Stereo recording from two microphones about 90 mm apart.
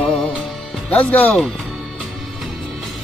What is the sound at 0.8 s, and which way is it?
Speech, 15° left (ahead or behind).